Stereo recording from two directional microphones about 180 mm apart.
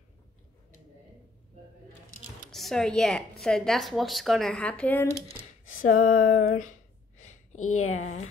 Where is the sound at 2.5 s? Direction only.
Centre (ahead or behind).